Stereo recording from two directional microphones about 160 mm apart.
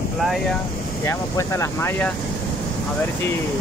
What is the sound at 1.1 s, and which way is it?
Speech, 20° left (ahead or behind).